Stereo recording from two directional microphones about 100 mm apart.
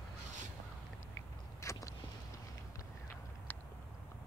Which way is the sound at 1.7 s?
30° left (ahead or behind).